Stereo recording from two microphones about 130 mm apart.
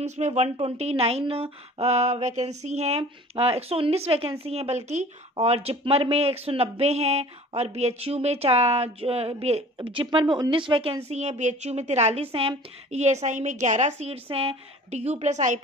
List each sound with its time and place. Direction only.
0.0 s a woman's voice: 60° right (ahead or behind)
14.3 s speech: 45° right (ahead or behind); by 15.6 s 70° right (ahead or behind)